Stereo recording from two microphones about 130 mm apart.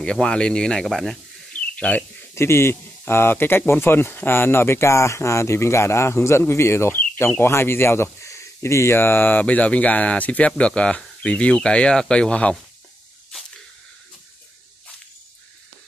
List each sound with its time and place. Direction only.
0.0 s speech: 5° left (ahead or behind)